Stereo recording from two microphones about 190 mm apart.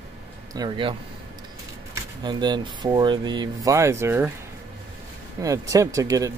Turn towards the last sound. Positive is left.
turn(degrees=-15)  # may be behind; listen again after turning